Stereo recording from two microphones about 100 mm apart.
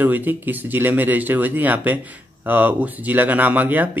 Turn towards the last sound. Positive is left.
turn(degrees=-20)  # may be behind; listen again after turning